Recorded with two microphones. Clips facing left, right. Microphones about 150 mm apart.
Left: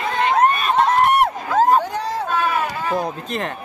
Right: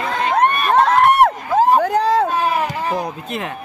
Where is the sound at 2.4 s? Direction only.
15° right (ahead or behind).